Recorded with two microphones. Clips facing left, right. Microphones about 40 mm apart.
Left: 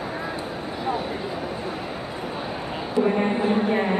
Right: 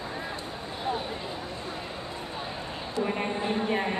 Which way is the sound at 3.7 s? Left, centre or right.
Centre.